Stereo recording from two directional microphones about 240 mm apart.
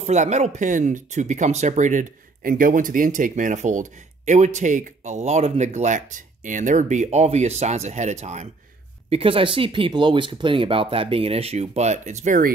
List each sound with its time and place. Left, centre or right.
0.0 s speech: right